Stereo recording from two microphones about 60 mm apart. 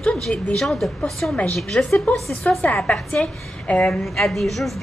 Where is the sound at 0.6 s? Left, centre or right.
Centre.